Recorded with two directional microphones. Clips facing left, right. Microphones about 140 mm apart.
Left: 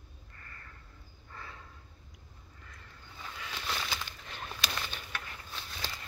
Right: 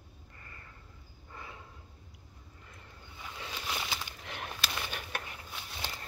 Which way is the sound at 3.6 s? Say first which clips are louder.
Left 1 dB; 15° right (ahead or behind).